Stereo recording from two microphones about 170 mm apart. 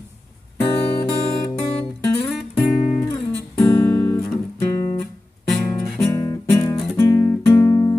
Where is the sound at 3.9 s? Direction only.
25° left (ahead or behind).